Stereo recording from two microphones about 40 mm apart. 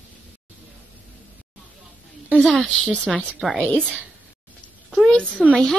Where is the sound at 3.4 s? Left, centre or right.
Centre.